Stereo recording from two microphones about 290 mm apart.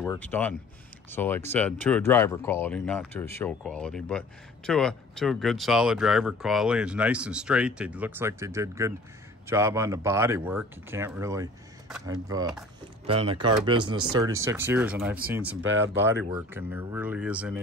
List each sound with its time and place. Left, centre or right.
0.0 s speech: centre
13.7 s speech: right
14.4 s speech: centre
15.6 s speech: right
16.0 s speech: centre